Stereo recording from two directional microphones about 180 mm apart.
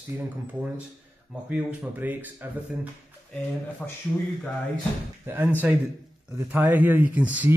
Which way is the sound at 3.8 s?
5° left (ahead or behind).